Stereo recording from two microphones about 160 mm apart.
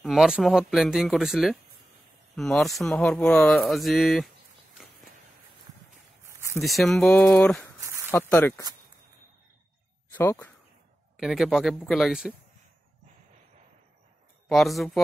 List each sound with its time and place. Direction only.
0.0 s speech: 5° right (ahead or behind)
6.6 s speech: centre (ahead or behind)
7.8 s a sound: 20° right (ahead or behind)
8.1 s speech: 10° left (ahead or behind)
10.1 s speech: 10° left (ahead or behind)
11.1 s speech: centre (ahead or behind)
14.5 s speech: centre (ahead or behind)